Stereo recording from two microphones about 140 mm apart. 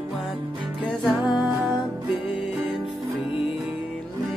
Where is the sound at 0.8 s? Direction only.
Centre (ahead or behind).